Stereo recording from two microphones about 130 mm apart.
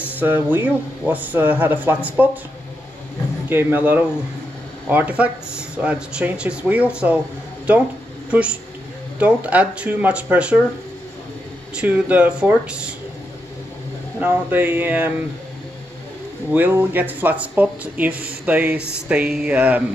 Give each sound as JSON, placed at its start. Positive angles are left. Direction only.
{"t": 0.1, "sound": "speech", "side_deg": -15}
{"t": 3.4, "sound": "speech", "side_deg": -15}
{"t": 8.3, "sound": "speech", "side_deg": -10}
{"t": 11.7, "sound": "speech", "side_deg": -10}
{"t": 14.2, "sound": "speech", "side_deg": -15}
{"t": 16.5, "sound": "speech", "side_deg": -15}